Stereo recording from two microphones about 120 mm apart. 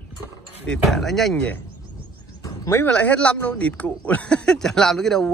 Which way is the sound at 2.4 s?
25° left (ahead or behind).